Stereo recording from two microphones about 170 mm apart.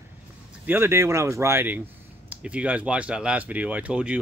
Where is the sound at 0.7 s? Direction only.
15° right (ahead or behind).